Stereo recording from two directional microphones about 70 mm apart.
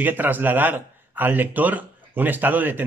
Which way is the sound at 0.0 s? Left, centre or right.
Right.